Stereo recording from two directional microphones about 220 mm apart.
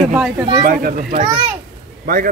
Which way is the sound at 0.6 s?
40° right (ahead or behind).